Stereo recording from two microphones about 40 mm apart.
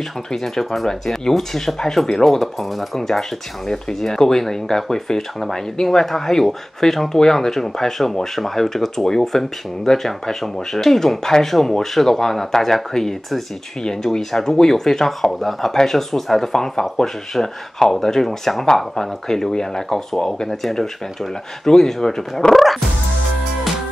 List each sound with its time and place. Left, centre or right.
0.3 s speech: centre